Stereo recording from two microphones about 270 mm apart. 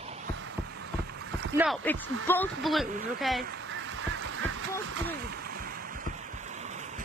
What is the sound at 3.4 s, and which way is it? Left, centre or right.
Goose, right.